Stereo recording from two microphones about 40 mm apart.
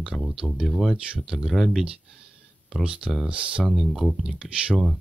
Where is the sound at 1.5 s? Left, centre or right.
Centre.